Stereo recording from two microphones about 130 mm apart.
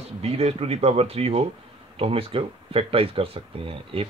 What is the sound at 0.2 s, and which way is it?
Speech, 50° right (ahead or behind).